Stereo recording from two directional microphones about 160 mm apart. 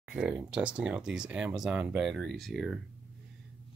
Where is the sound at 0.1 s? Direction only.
5° right (ahead or behind).